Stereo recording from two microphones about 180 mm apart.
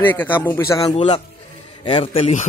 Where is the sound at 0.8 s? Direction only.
30° left (ahead or behind).